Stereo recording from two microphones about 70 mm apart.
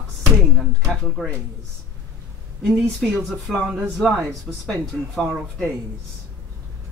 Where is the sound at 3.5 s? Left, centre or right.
Centre.